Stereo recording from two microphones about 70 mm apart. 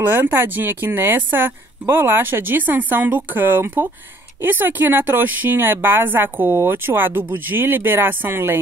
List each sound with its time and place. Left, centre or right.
0.1 s speech: right